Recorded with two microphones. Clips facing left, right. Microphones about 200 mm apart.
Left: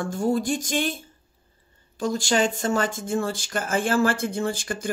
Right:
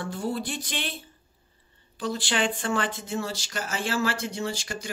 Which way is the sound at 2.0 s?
45° left (ahead or behind).